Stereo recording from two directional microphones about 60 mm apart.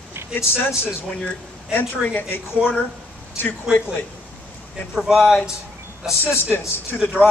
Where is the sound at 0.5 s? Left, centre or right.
Left.